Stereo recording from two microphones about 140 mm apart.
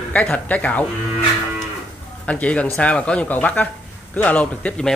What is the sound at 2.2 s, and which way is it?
Speech, 10° left (ahead or behind).